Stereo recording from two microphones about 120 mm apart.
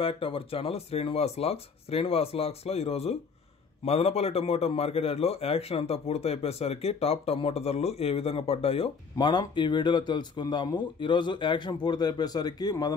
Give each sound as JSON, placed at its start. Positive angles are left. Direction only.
{"t": 0.0, "sound": "a man's voice", "side_deg": 50}